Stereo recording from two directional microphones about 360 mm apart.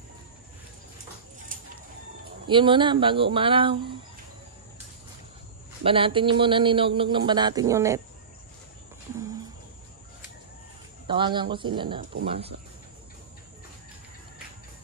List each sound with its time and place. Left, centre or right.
2.4 s speech: centre
5.9 s speech: centre
11.1 s speech: centre